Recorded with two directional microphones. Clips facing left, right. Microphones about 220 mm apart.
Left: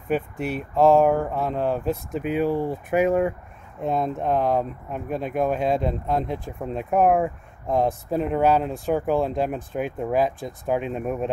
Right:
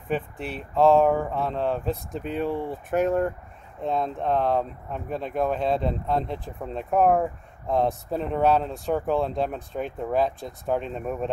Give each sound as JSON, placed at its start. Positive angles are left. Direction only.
{"t": 0.4, "sound": "speech", "side_deg": -30}
{"t": 0.7, "sound": "speech", "side_deg": 0}